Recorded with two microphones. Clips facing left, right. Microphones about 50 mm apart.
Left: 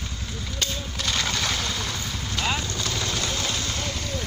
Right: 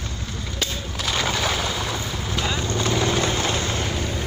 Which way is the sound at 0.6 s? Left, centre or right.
Centre.